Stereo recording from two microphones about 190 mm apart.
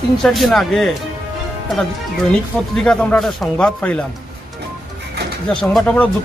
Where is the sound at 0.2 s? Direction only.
Centre (ahead or behind).